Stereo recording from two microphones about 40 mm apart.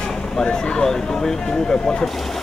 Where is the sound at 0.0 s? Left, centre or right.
Centre.